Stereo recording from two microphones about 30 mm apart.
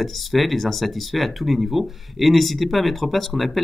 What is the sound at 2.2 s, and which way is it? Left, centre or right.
Speech, centre.